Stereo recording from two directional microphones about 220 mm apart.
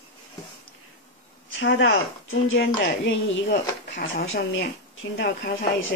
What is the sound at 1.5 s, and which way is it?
Speech, 55° left (ahead or behind).